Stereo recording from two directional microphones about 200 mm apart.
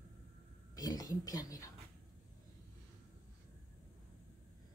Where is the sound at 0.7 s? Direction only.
20° left (ahead or behind).